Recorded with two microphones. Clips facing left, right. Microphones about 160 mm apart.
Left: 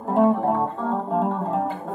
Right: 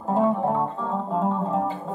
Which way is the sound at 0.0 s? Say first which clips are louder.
Left 3 dB; 60° left (ahead or behind).